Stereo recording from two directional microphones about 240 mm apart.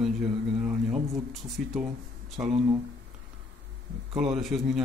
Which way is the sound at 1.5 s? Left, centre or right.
Centre.